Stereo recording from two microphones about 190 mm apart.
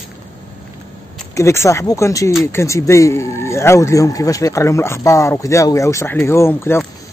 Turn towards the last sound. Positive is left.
turn(degrees=10)  # may be behind; listen again after turning